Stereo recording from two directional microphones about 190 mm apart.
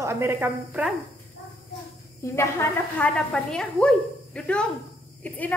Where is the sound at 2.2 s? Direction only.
15° left (ahead or behind).